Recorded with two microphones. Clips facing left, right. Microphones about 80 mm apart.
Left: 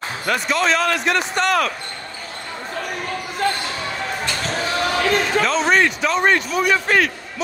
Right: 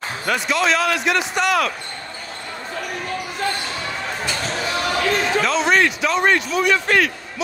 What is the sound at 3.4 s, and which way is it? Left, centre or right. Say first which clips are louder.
Basketball bounce: left 3 dB; left.